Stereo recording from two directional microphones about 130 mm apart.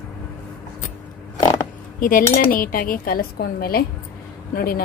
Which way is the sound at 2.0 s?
90° left.